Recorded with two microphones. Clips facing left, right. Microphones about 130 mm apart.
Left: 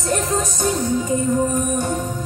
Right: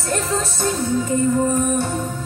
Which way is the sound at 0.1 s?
15° left (ahead or behind).